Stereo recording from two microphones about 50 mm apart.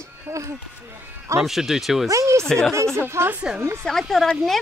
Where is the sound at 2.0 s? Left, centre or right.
Right.